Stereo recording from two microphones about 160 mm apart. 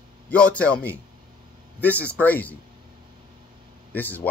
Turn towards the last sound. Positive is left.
turn(degrees=10)  # may be behind; listen again after turning